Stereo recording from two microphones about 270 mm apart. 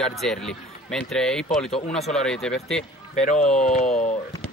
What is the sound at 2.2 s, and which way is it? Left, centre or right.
A man's voice, centre.